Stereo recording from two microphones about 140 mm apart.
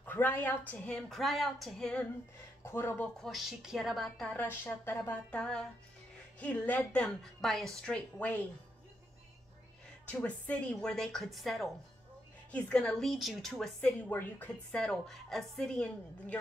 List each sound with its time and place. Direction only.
0.0 s a woman's voice: 15° left (ahead or behind)
2.6 s a woman's voice: 15° left (ahead or behind)
3.2 s a woman's voice: centre (ahead or behind)
10.0 s a woman's voice: 10° left (ahead or behind)